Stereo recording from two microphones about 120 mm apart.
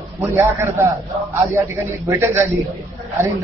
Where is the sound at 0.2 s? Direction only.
20° right (ahead or behind).